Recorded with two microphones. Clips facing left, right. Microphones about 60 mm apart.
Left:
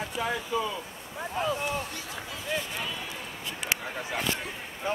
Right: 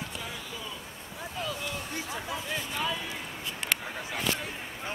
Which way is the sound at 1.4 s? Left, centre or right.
Left.